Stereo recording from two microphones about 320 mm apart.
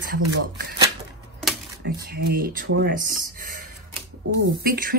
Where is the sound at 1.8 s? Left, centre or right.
Right.